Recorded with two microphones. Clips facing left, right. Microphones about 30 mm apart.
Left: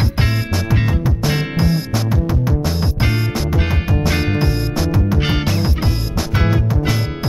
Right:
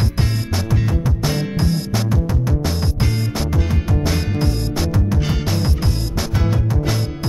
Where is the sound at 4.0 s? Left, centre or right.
Left.